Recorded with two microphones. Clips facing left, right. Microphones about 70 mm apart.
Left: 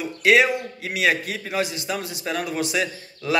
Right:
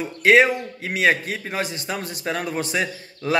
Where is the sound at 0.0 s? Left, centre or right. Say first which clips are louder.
Right 2 dB; right.